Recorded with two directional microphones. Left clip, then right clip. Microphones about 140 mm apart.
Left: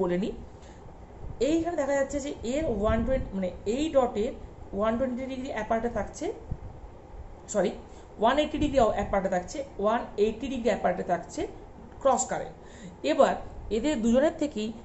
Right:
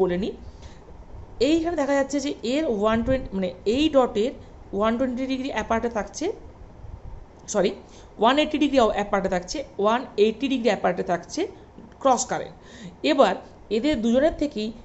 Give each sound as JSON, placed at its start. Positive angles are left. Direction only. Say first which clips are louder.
{"t": 0.0, "sound": "a woman's voice", "louder": "right 5 dB", "side_deg": -35}
{"t": 1.4, "sound": "a woman's voice", "louder": "right 5 dB", "side_deg": -55}
{"t": 7.4, "sound": "a woman's voice", "louder": "right 4 dB", "side_deg": -60}
{"t": 13.7, "sound": "a woman's voice", "louder": "right 5 dB", "side_deg": -35}
{"t": 14.0, "sound": "speech", "louder": "right 1 dB", "side_deg": -20}